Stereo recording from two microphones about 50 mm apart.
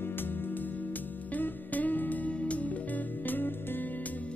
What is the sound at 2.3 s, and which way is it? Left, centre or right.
Music, left.